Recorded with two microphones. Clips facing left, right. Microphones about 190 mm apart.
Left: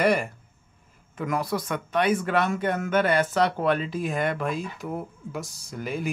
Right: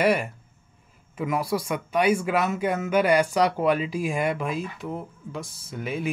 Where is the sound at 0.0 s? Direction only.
5° right (ahead or behind).